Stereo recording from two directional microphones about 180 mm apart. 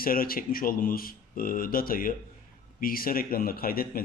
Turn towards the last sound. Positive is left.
turn(degrees=55)  # may be behind; listen again after turning